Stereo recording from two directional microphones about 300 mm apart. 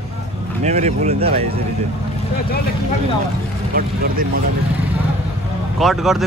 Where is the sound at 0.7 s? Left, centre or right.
Right.